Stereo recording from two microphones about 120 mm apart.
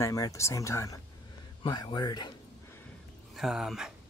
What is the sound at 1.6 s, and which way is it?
Speech, 40° left (ahead or behind).